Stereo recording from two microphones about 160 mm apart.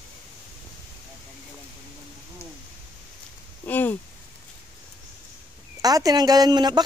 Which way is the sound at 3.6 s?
10° left (ahead or behind).